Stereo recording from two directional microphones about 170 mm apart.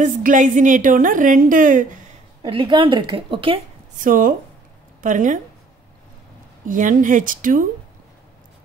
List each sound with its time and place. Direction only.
0.0 s a woman's voice: 50° right (ahead or behind)
2.4 s a woman's voice: 30° right (ahead or behind)
3.9 s a woman's voice: 55° right (ahead or behind)
6.7 s a woman's voice: 50° right (ahead or behind)